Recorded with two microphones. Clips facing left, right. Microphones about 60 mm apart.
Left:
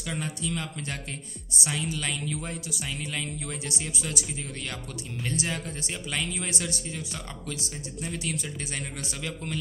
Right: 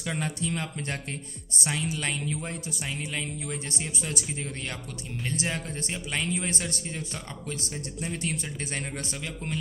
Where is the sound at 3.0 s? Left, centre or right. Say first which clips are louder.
Even; centre.